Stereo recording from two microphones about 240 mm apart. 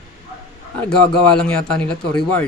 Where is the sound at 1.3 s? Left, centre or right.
Centre.